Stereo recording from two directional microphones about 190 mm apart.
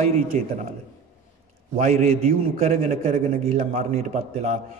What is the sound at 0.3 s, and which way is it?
Speech, 40° right (ahead or behind).